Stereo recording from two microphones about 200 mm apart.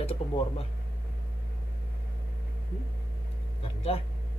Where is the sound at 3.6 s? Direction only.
30° left (ahead or behind).